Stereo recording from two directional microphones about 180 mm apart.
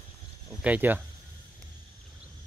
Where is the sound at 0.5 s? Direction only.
5° right (ahead or behind).